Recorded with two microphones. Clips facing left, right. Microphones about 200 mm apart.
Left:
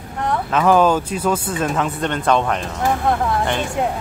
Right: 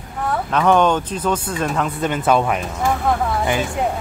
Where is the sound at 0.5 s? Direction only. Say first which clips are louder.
Left 1 dB; 5° left (ahead or behind).